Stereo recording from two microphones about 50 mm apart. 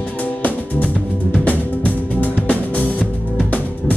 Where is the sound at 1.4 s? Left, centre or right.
Left.